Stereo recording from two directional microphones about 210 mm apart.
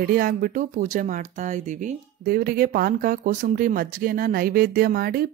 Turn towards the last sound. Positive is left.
turn(degrees=-45)  # may be behind; listen again after turning